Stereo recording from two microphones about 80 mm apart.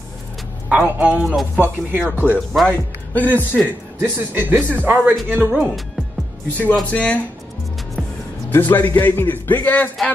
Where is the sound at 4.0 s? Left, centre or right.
Right.